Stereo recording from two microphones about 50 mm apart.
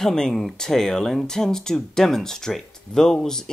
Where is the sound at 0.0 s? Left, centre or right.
Centre.